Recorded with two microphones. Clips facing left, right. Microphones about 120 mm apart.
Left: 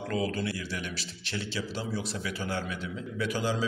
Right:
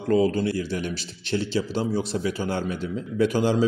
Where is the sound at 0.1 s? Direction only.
35° right (ahead or behind).